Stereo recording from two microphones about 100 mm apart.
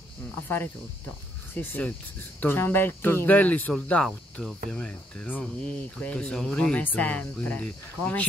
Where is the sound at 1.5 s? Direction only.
20° left (ahead or behind).